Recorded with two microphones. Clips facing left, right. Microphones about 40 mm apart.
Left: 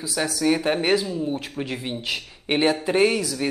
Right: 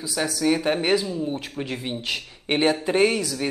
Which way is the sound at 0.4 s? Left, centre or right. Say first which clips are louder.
Left 1 dB; centre.